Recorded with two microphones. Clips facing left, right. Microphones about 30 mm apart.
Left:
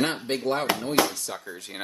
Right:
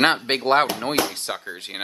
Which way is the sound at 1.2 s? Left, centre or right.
Right.